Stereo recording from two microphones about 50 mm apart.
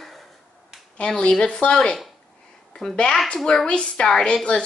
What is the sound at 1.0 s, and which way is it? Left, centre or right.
A woman's voice, centre.